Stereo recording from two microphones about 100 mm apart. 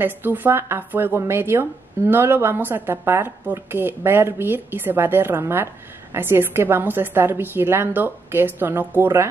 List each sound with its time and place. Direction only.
0.0 s a woman's voice: 20° right (ahead or behind)